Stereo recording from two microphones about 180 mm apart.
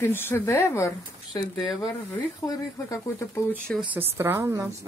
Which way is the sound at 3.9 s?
15° right (ahead or behind).